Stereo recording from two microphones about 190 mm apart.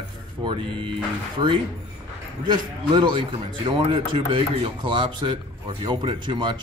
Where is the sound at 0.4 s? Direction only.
25° right (ahead or behind).